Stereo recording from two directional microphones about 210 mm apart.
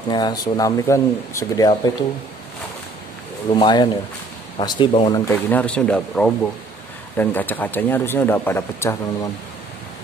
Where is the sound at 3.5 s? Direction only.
20° left (ahead or behind).